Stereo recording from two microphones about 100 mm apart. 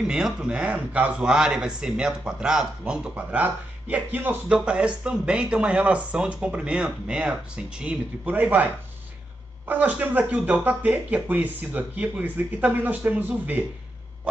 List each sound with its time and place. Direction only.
0.0 s a man's voice: 5° right (ahead or behind)
9.7 s a man's voice: 15° right (ahead or behind)